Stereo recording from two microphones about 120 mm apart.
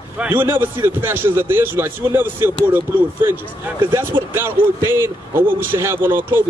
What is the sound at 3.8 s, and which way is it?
A man's voice, 20° right (ahead or behind).